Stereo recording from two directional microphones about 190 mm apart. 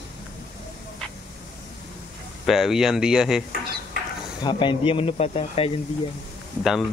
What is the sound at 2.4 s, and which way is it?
Speech, centre (ahead or behind).